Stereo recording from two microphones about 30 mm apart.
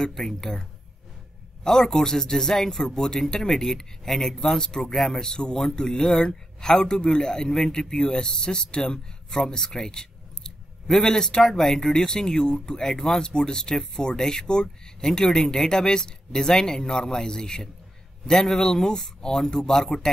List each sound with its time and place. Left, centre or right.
0.0 s a man's voice: centre
1.6 s a man's voice: centre
4.6 s speech: left
9.3 s a man's voice: centre
12.1 s speech: left
12.8 s a man's voice: centre